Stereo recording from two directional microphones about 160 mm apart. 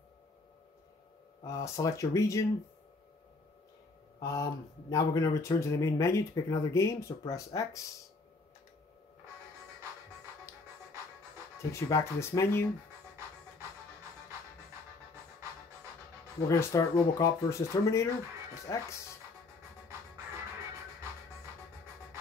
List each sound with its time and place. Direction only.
1.4 s speech: 20° left (ahead or behind)
4.2 s speech: 20° left (ahead or behind)
11.9 s speech: 15° left (ahead or behind)
16.3 s speech: 20° left (ahead or behind)